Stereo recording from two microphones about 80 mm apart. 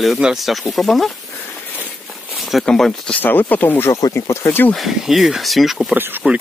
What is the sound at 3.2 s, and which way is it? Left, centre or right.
Speech, left.